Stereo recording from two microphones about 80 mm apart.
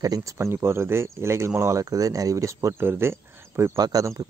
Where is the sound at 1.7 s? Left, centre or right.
Right.